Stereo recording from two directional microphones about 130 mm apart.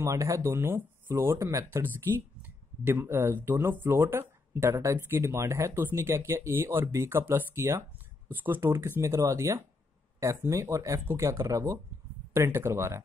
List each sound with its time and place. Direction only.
0.0 s speech: 25° right (ahead or behind)